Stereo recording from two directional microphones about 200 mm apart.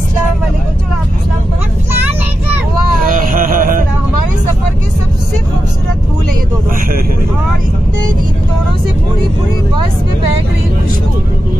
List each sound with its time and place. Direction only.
3.0 s music: 40° right (ahead or behind)